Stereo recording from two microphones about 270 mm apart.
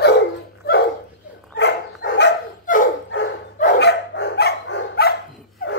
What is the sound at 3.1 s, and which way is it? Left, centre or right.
Dog, left.